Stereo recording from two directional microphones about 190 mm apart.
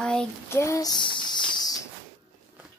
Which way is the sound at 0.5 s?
15° left (ahead or behind).